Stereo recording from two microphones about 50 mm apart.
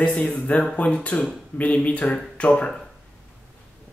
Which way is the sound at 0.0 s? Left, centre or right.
Centre.